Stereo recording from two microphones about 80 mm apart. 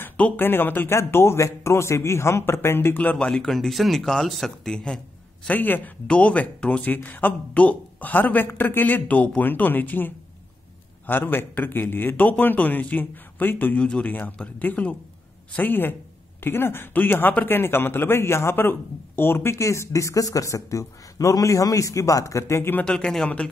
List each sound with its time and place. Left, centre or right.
0.0 s speech: left; by 4.7 s centre
4.7 s a sound: centre
5.5 s speech: left
22.8 s speech: centre